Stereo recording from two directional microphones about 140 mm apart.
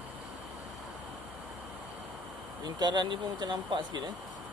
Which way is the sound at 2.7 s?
30° right (ahead or behind).